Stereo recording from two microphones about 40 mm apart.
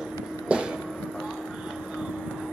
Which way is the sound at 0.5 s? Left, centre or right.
Right.